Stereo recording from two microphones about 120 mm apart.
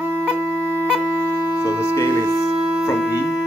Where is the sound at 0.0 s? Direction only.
10° right (ahead or behind).